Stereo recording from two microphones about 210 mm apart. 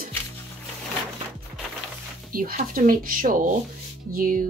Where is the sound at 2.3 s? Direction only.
40° right (ahead or behind).